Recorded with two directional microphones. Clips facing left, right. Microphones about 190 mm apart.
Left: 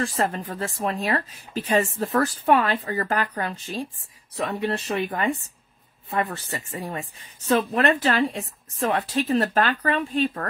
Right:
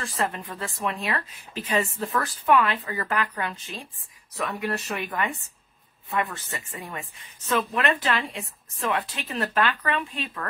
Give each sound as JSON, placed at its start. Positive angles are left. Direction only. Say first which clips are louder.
{"t": 0.0, "sound": "a woman's voice", "louder": "left 4 dB", "side_deg": 40}